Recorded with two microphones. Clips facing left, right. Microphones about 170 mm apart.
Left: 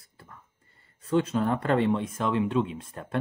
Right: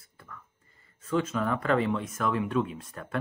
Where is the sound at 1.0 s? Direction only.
35° left (ahead or behind).